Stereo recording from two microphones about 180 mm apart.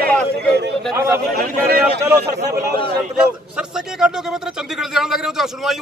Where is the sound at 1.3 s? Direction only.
55° right (ahead or behind).